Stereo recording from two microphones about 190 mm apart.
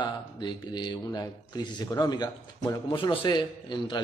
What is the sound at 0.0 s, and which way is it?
A man's voice, 25° left (ahead or behind).